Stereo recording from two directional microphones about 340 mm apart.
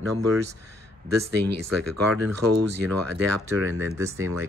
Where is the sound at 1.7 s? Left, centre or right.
Right.